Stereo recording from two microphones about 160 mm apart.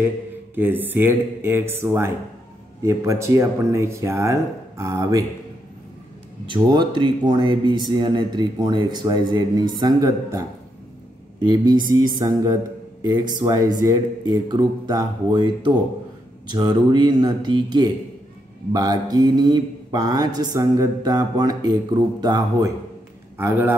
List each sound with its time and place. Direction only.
0.6 s speech: 10° right (ahead or behind)
6.5 s speech: 30° right (ahead or behind)
11.4 s speech: 25° right (ahead or behind)
23.3 s speech: 15° right (ahead or behind)